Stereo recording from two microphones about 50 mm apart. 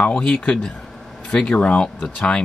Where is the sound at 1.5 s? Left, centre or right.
Left.